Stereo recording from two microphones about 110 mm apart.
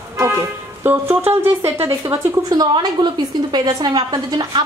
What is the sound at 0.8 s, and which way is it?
A woman's voice, 20° right (ahead or behind).